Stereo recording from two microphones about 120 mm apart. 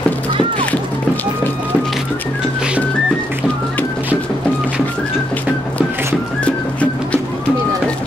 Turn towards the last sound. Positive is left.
turn(degrees=10)  # may be behind; listen again after turning